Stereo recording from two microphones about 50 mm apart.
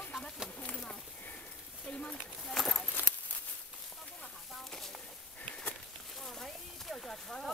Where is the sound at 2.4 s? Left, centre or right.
Centre.